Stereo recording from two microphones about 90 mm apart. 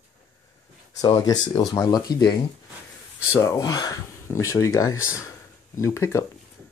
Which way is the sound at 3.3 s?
35° left (ahead or behind).